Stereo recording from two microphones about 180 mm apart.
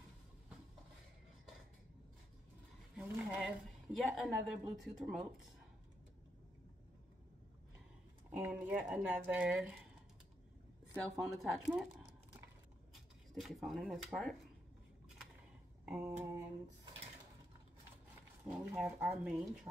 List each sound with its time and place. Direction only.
3.0 s a sound: 5° right (ahead or behind)
4.5 s speech: centre (ahead or behind)
8.3 s speech: 10° right (ahead or behind)
11.1 s speech: centre (ahead or behind)
13.3 s speech: centre (ahead or behind)
15.8 s a sound: 15° right (ahead or behind)
18.4 s speech: 10° right (ahead or behind)